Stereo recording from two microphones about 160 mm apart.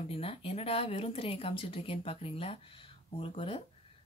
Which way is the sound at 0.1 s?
35° left (ahead or behind).